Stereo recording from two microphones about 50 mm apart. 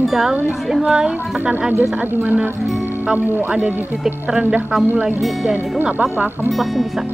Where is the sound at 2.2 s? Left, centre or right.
Right.